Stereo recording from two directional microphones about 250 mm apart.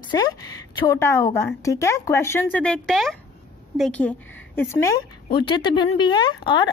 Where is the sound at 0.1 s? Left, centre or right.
Centre.